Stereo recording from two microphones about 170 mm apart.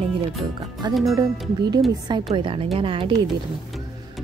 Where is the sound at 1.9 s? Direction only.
25° right (ahead or behind).